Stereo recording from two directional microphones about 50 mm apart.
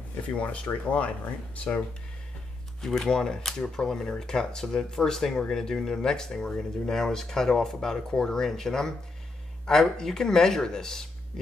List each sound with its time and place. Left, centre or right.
0.3 s speech: left
2.8 s speech: centre